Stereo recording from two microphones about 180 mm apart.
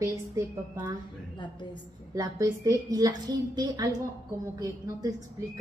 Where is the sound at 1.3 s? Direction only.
25° left (ahead or behind).